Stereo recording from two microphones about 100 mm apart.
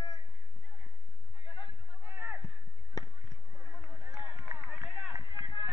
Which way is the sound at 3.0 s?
40° left (ahead or behind).